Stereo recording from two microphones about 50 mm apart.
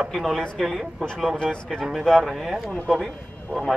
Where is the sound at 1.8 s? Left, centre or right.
Centre.